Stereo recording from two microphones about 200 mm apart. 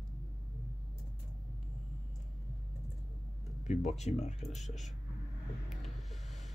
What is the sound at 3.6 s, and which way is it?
Speech, 35° left (ahead or behind).